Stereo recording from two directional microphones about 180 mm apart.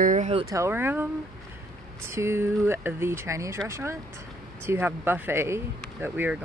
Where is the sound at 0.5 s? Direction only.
15° right (ahead or behind).